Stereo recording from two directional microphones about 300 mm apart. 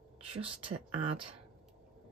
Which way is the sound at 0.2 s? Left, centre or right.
Centre.